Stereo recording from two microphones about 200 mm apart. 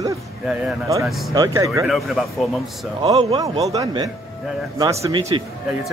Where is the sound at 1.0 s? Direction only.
Centre (ahead or behind).